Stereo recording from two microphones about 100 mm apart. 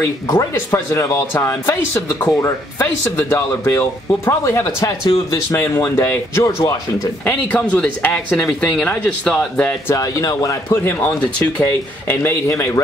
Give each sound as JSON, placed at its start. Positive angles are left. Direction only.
{"t": 0.0, "sound": "speech", "side_deg": 25}
{"t": 7.2, "sound": "speech", "side_deg": 15}
{"t": 9.9, "sound": "speech", "side_deg": 35}